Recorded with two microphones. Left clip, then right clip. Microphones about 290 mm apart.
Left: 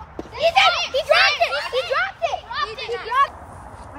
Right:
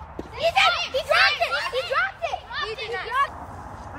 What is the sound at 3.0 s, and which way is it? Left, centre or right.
Speech, left.